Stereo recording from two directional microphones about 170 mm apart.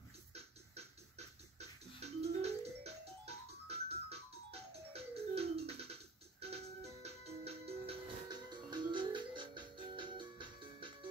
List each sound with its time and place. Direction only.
0.3 s beatboxing: 40° right (ahead or behind)
2.4 s music: 40° right (ahead or behind)